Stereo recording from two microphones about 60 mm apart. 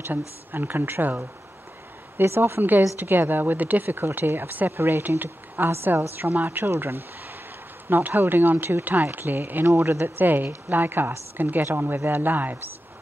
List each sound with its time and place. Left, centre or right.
0.5 s speech: right
9.7 s speech: right